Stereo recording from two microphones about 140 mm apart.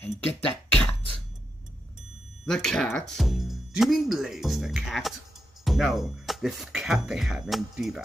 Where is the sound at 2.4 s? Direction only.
5° left (ahead or behind).